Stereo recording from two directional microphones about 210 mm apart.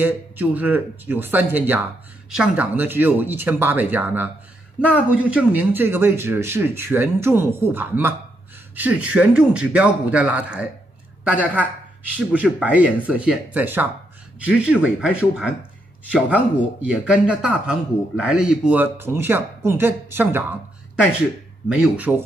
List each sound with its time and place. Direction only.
0.0 s a man's voice: 10° right (ahead or behind)
12.2 s a man's voice: 5° right (ahead or behind)
21.6 s a man's voice: 5° right (ahead or behind)